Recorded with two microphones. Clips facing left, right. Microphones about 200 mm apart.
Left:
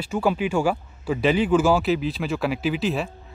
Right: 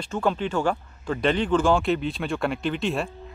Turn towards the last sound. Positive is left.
turn(degrees=0)  # may be behind; listen again after turning